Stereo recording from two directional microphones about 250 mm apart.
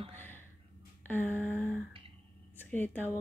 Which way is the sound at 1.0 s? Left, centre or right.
Centre.